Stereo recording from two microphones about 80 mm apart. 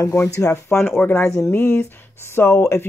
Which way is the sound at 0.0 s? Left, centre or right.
Left.